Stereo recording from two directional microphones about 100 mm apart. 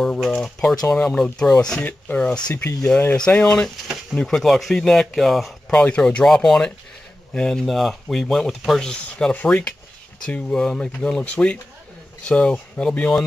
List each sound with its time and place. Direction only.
0.0 s speech: centre (ahead or behind)
5.7 s speech: 10° left (ahead or behind)